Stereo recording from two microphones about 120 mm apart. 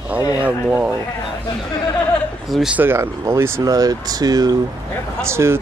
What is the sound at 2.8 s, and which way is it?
Speech, 20° right (ahead or behind).